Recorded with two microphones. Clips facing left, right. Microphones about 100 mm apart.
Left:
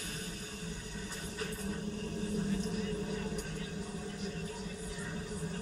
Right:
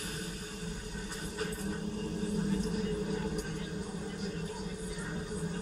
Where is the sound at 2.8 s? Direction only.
35° right (ahead or behind).